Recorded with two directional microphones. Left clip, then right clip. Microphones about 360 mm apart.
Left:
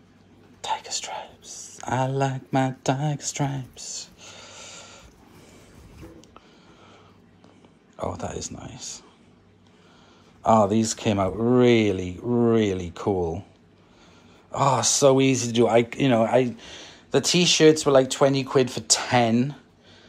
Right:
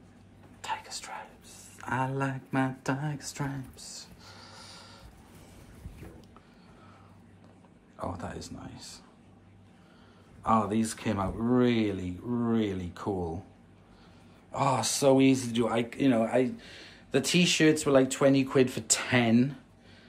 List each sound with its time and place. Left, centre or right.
0.6 s speech: centre
4.7 s snort: centre
7.9 s speech: centre
10.4 s speech: centre
14.5 s speech: centre